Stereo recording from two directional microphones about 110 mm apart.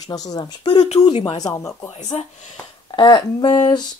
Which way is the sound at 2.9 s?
40° left (ahead or behind).